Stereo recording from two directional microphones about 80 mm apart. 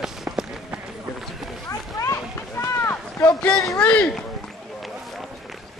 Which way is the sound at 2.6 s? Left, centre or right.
Left.